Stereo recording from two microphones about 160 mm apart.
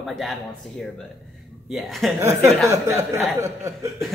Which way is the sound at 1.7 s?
Centre (ahead or behind).